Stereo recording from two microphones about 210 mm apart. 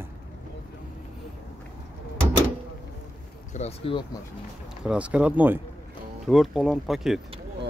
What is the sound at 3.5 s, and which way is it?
Speech, 30° left (ahead or behind).